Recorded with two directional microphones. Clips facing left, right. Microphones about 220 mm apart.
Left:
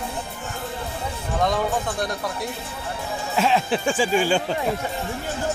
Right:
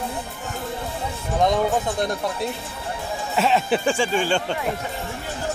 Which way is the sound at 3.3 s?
Centre (ahead or behind).